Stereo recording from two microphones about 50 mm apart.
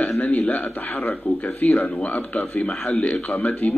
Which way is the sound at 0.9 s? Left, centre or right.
Left.